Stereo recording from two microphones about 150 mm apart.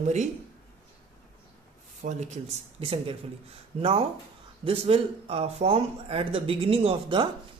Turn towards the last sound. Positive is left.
turn(degrees=-35)  # may be behind; listen again after turning